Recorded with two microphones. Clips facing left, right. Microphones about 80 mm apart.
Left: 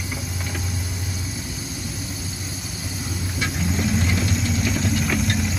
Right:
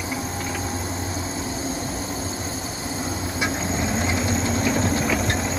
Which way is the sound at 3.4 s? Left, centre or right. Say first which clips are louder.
Left 1 dB; right.